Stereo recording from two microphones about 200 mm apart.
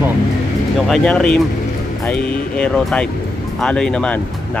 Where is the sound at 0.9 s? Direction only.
5° left (ahead or behind).